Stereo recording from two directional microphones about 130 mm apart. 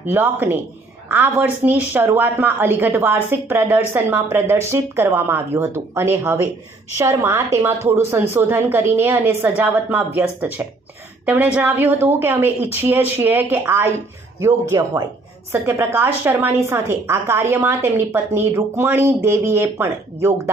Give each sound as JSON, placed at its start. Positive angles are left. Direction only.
{"t": 0.0, "sound": "a woman's voice", "side_deg": -15}